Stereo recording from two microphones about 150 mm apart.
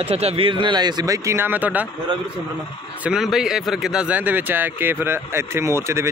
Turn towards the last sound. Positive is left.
turn(degrees=-20)  # may be behind; listen again after turning